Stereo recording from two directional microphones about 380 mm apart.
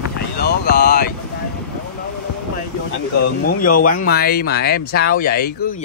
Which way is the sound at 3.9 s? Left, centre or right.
Left.